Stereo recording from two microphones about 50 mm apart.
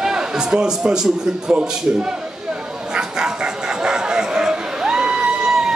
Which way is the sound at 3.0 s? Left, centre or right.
Centre.